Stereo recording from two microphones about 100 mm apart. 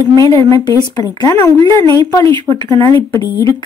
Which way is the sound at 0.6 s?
40° left (ahead or behind).